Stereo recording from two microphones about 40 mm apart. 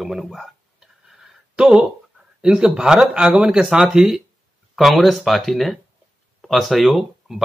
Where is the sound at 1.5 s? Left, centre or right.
Right.